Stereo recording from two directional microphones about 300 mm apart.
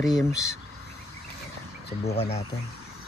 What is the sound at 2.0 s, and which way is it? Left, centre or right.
Speech, centre.